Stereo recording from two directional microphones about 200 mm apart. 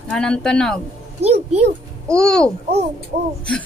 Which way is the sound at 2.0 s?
5° left (ahead or behind).